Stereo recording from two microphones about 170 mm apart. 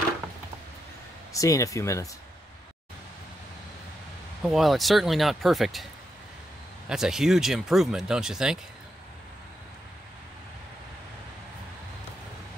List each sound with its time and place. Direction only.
1.3 s speech: 20° left (ahead or behind)
4.4 s speech: centre (ahead or behind)
6.9 s speech: 5° right (ahead or behind)